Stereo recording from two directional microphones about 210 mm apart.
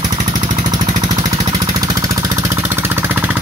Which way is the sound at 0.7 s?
20° right (ahead or behind).